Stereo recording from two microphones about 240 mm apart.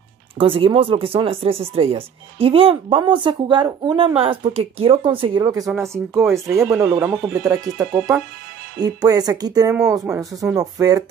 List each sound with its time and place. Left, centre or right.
0.4 s speech: right
10.0 s speech: centre